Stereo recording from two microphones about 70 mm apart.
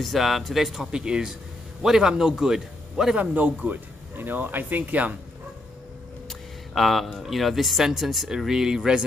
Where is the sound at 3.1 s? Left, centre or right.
Right.